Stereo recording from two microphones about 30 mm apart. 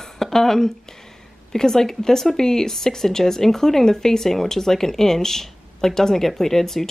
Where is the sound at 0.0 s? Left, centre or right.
Centre.